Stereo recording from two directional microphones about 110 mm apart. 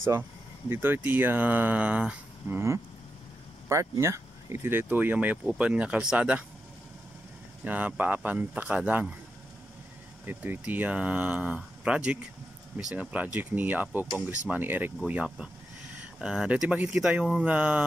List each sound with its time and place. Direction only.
0.7 s speech: 20° right (ahead or behind)
4.0 s speech: 25° right (ahead or behind)
7.6 s speech: 15° right (ahead or behind)
10.2 s speech: 20° right (ahead or behind)